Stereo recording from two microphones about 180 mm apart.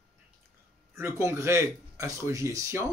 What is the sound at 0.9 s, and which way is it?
Speech, 15° right (ahead or behind).